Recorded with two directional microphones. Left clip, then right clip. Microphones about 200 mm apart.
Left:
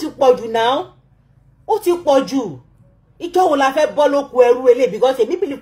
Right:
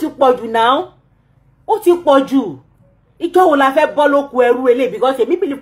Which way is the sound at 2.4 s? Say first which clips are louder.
Right 4 dB; 20° right (ahead or behind).